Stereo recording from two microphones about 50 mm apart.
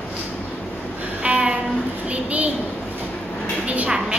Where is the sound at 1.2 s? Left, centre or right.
Right.